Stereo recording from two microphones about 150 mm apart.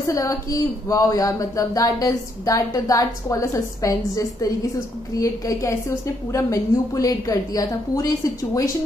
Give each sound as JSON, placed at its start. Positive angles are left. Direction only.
{"t": 0.0, "sound": "speech", "side_deg": 20}